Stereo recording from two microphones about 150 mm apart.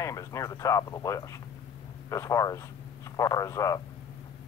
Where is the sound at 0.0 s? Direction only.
20° left (ahead or behind).